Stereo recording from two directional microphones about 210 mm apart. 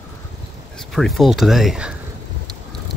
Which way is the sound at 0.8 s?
Centre (ahead or behind).